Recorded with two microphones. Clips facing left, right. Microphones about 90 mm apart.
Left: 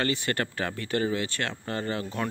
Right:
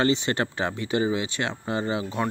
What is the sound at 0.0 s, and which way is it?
Speech, 20° right (ahead or behind).